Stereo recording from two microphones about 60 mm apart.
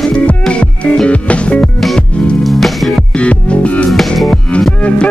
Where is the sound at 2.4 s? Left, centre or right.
Centre.